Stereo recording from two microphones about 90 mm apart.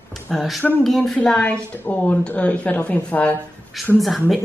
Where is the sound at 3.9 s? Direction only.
Centre (ahead or behind).